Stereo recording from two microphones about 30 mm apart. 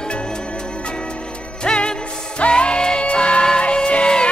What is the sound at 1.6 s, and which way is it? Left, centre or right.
Music, left.